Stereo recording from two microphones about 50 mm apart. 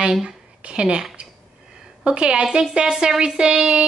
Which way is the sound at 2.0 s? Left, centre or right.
Centre.